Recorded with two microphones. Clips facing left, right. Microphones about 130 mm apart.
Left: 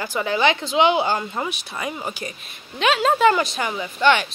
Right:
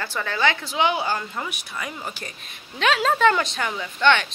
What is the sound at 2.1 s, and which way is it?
Speech, 10° left (ahead or behind).